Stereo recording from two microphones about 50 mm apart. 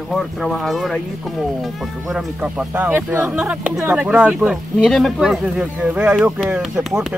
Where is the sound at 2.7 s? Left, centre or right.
Right.